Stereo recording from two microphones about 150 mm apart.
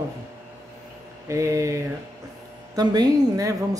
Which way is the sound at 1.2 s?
20° right (ahead or behind).